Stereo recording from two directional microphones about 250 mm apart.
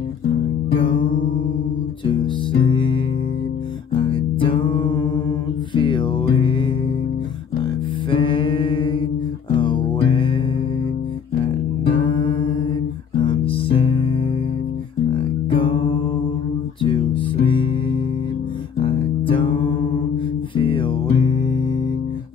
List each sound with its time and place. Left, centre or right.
0.7 s music: centre
2.0 s music: centre
4.0 s music: centre
11.4 s music: left